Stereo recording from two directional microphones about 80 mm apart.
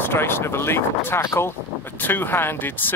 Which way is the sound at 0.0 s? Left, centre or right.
Left.